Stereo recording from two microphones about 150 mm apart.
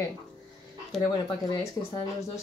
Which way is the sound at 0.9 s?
Centre (ahead or behind).